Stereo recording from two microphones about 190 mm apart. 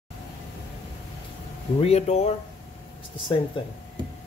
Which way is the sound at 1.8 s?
35° left (ahead or behind).